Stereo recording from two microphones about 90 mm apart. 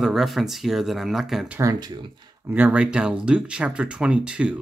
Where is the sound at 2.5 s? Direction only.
15° right (ahead or behind).